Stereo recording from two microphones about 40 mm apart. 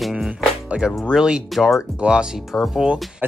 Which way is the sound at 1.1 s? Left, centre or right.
Centre.